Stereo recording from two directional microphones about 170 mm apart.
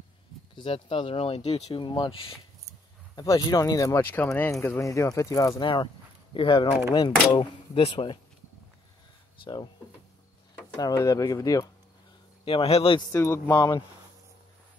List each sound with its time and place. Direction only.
0.6 s speech: 30° left (ahead or behind)
9.4 s speech: 25° left (ahead or behind)
11.0 s speech: 20° left (ahead or behind)
12.4 s speech: 35° left (ahead or behind)
13.1 s speech: 15° left (ahead or behind)